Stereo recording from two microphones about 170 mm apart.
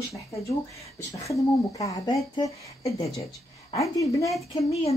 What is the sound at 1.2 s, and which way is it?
Speech, 20° left (ahead or behind).